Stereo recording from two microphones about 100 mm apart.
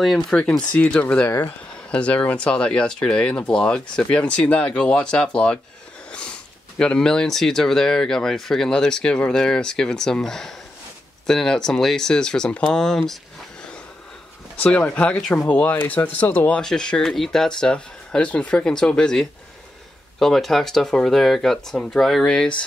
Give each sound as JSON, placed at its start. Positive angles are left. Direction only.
{"t": 0.0, "sound": "speech", "side_deg": 5}
{"t": 6.8, "sound": "speech", "side_deg": 10}
{"t": 14.6, "sound": "speech", "side_deg": 15}